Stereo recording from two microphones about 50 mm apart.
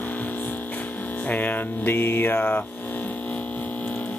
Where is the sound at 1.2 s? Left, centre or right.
Left.